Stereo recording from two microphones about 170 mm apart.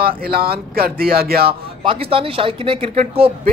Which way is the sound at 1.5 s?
35° right (ahead or behind).